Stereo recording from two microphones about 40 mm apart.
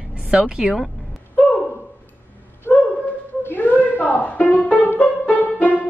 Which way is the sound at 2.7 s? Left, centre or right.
Left.